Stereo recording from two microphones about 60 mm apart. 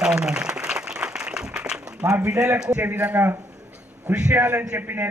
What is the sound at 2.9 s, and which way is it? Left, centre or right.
Speech, right.